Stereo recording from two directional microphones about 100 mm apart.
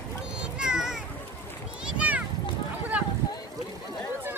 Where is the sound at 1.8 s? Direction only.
10° right (ahead or behind).